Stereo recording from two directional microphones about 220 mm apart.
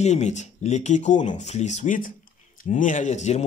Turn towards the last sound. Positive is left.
turn(degrees=30)  # may be behind; listen again after turning